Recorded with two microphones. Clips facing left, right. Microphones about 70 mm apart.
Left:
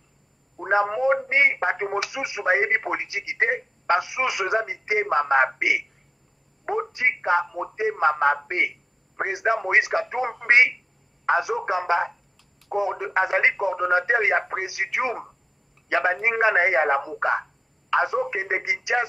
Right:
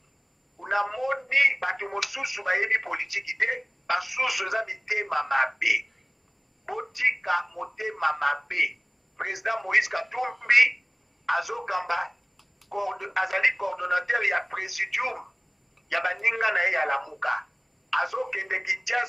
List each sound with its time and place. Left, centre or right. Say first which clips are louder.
0.6 s a man's voice: left 5 dB; left